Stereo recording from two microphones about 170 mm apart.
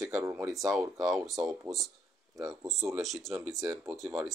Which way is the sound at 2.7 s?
Centre (ahead or behind).